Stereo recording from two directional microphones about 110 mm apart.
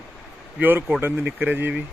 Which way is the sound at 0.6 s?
15° right (ahead or behind).